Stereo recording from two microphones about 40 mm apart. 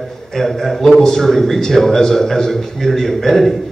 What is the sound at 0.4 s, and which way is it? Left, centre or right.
A man's voice, centre.